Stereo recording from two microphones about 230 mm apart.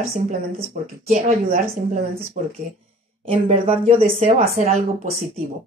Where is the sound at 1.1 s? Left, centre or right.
Right.